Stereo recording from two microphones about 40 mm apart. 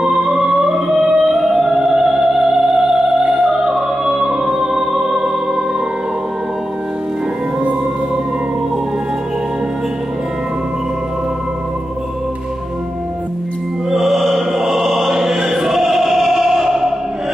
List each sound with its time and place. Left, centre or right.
0.0 s music: right
13.8 s music: centre